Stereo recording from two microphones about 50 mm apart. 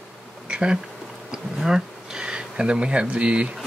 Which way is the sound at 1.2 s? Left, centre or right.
Centre.